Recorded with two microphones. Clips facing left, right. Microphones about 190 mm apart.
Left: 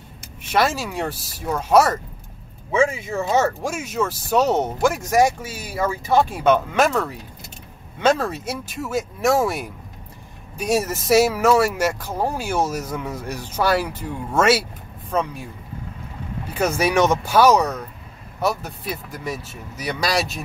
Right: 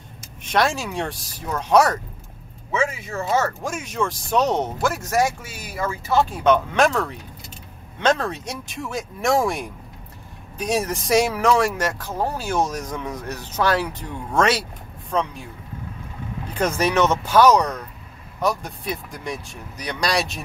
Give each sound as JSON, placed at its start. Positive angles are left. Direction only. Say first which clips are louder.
{"t": 0.4, "sound": "speech", "louder": "left 1 dB", "side_deg": 5}
{"t": 3.1, "sound": "speech", "louder": "left 3 dB", "side_deg": 10}
{"t": 6.5, "sound": "speech", "louder": "even", "side_deg": 5}
{"t": 16.5, "sound": "speech", "louder": "left 1 dB", "side_deg": 10}